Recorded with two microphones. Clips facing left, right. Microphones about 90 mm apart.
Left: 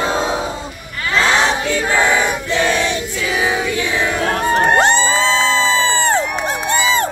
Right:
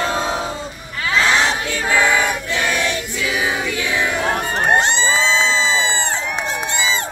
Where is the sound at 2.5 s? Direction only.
30° left (ahead or behind).